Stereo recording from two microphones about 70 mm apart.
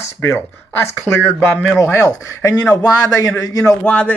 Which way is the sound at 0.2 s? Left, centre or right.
Left.